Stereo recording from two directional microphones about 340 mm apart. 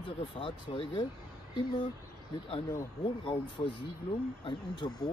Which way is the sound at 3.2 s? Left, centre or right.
Centre.